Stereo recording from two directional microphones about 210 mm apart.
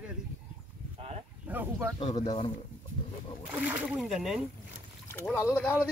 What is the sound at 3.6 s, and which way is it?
Speech, 5° right (ahead or behind).